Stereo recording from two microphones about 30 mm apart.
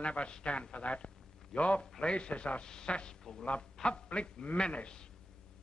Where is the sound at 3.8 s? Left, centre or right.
Left.